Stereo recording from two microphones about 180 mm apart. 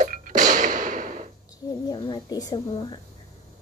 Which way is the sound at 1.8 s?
25° left (ahead or behind).